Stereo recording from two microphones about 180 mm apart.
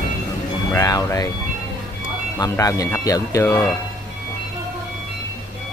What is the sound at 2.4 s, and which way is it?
Speech, 20° left (ahead or behind).